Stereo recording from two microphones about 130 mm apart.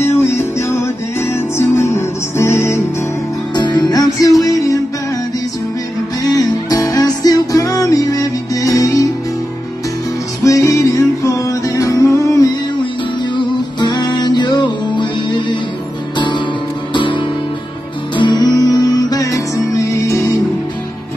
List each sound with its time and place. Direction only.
0.0 s music: 20° left (ahead or behind)
3.5 s music: 35° left (ahead or behind)
6.3 s music: 30° left (ahead or behind)
10.4 s music: 25° left (ahead or behind)